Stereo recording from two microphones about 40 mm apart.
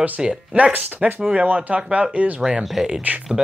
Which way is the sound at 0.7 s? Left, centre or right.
Right.